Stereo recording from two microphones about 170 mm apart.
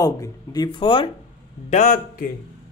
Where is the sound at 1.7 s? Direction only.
50° left (ahead or behind).